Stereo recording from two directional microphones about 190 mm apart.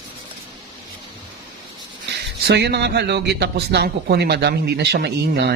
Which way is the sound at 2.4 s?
60° right (ahead or behind).